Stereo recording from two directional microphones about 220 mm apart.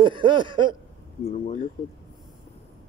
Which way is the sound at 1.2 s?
30° left (ahead or behind).